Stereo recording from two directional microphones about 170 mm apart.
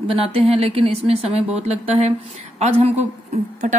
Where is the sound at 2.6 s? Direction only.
40° right (ahead or behind).